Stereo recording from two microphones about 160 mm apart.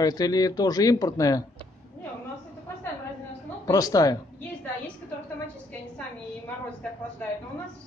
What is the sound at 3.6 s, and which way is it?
Speech, 25° left (ahead or behind).